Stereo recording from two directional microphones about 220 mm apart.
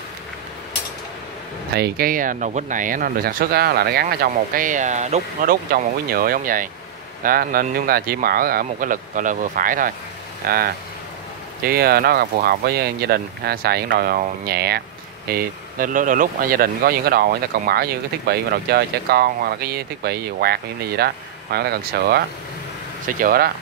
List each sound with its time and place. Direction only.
1.7 s speech: 45° right (ahead or behind)